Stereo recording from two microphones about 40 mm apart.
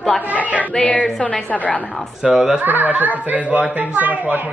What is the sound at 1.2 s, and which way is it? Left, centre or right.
Speech, left.